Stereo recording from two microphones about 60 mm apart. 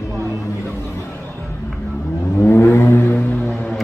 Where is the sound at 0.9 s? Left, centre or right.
Left.